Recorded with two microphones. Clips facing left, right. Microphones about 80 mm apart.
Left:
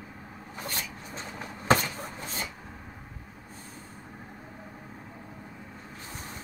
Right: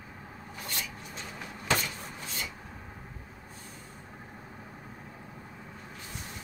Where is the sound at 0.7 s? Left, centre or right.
Left.